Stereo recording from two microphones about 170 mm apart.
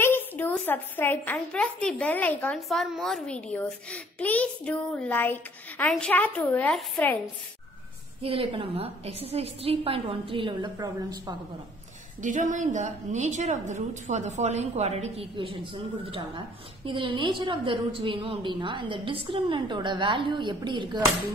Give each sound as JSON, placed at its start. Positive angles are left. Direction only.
{"t": 0.0, "sound": "a woman's voice", "side_deg": 10}
{"t": 8.2, "sound": "a woman's voice", "side_deg": -35}
{"t": 12.2, "sound": "a woman's voice", "side_deg": -50}